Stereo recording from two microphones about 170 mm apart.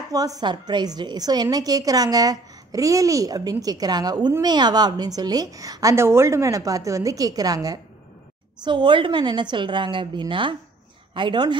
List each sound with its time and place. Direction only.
0.1 s a woman's voice: 20° right (ahead or behind)